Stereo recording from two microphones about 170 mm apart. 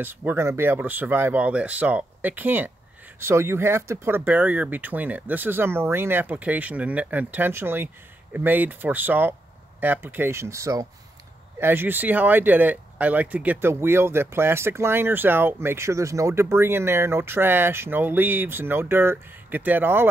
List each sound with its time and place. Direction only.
0.0 s speech: 10° right (ahead or behind)